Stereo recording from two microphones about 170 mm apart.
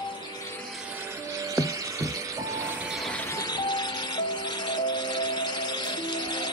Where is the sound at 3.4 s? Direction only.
25° left (ahead or behind).